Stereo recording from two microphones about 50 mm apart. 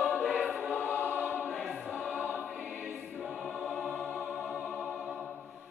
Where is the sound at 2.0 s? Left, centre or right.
Right.